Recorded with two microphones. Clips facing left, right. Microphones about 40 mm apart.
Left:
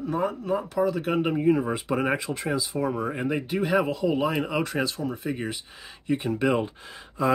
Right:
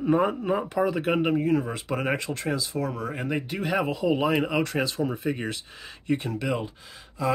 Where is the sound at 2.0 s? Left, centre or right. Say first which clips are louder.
Left 1 dB; centre.